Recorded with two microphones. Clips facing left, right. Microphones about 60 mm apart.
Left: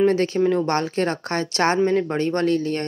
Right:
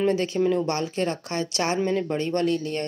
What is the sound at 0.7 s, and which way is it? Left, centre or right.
A woman's voice, left.